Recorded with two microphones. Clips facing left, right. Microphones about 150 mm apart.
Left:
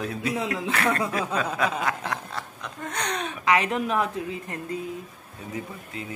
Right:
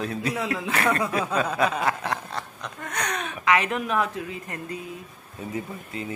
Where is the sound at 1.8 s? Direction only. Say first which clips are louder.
Right 2 dB; 5° right (ahead or behind).